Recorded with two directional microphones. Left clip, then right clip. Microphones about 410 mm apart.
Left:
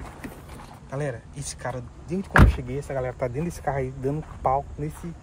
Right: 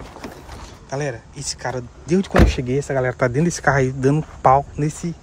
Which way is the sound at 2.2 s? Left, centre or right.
Right.